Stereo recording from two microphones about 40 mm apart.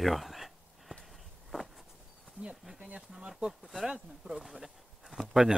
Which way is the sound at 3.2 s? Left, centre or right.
Right.